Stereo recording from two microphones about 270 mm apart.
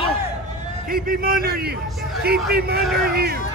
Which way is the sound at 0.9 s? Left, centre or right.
Right.